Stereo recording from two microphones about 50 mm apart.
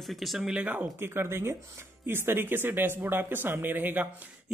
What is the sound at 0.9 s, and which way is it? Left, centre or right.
Speech, right.